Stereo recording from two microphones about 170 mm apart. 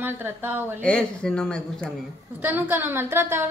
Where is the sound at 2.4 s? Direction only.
10° right (ahead or behind).